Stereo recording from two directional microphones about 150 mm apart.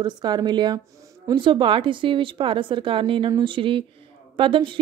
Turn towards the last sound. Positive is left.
turn(degrees=-35)  # may be behind; listen again after turning